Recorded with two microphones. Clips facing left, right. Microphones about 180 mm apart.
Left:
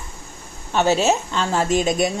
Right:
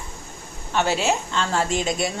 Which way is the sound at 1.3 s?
15° left (ahead or behind).